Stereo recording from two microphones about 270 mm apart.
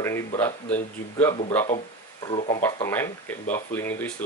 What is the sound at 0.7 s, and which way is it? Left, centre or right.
Speech, centre.